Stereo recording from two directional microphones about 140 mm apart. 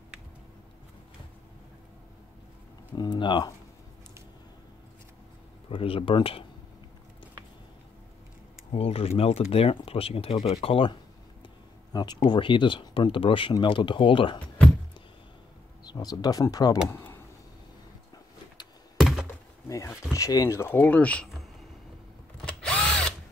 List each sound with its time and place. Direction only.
3.0 s speech: 35° left (ahead or behind)
5.7 s speech: 40° left (ahead or behind)
8.7 s speech: 45° left (ahead or behind)
15.8 s speech: 30° left (ahead or behind)
16.9 s speech: 15° left (ahead or behind)
18.9 s thunk: centre (ahead or behind)
19.7 s speech: 25° left (ahead or behind); by 21.6 s 5° left (ahead or behind)
22.4 s drill: 5° left (ahead or behind)